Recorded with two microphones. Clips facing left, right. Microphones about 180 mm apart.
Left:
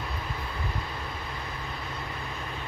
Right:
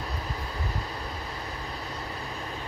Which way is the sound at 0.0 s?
35° right (ahead or behind).